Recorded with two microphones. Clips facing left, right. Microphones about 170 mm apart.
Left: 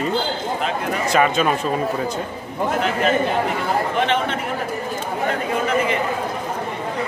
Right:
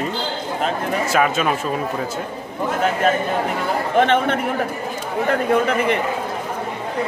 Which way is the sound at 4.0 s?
50° right (ahead or behind).